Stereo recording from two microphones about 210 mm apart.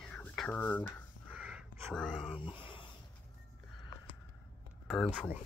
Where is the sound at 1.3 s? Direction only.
5° right (ahead or behind).